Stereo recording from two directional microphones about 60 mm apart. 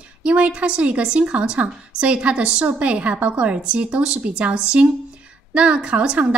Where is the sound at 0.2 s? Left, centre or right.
Centre.